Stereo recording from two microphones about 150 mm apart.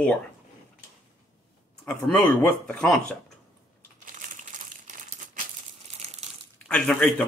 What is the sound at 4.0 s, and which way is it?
Crumpling, 60° right (ahead or behind).